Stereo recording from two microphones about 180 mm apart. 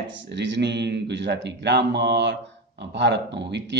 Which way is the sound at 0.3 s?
75° right (ahead or behind).